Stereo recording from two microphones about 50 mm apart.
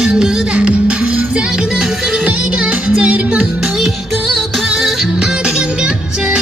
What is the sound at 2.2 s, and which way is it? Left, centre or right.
Music, right.